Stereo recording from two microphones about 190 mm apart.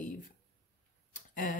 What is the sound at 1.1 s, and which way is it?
Tick, 45° left (ahead or behind).